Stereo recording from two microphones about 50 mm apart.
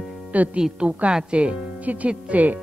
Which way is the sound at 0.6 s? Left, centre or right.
Centre.